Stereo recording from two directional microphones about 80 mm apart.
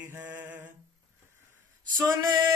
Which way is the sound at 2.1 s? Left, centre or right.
Right.